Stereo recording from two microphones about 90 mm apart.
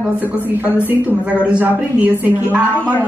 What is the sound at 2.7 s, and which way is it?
Speech, 20° left (ahead or behind).